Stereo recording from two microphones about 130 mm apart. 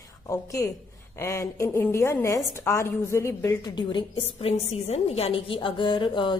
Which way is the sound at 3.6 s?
35° left (ahead or behind).